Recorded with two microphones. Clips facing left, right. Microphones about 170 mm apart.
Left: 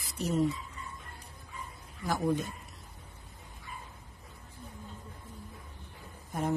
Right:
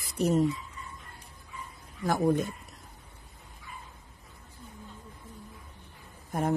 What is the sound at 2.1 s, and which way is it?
Speech, 55° right (ahead or behind).